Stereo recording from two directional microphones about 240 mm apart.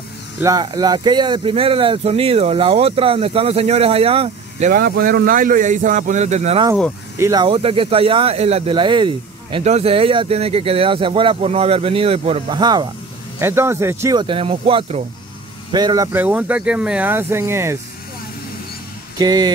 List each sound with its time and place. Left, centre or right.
0.4 s speech: centre
19.1 s speech: centre